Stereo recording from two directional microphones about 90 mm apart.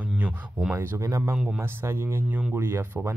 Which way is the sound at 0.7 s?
30° right (ahead or behind).